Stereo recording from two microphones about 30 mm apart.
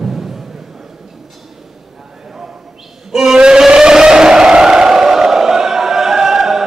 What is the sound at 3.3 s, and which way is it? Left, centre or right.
Vehicle, right.